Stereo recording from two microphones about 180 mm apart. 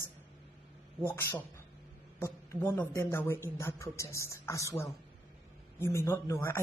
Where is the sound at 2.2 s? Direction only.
15° left (ahead or behind).